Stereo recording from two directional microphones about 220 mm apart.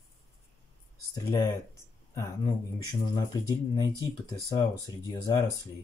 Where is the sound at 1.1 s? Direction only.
15° left (ahead or behind).